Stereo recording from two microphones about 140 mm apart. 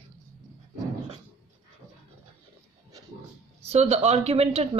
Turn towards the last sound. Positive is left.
turn(degrees=-45)  # may be behind; listen again after turning